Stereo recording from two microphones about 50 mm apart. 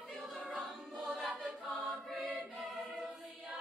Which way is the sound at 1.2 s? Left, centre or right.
Right.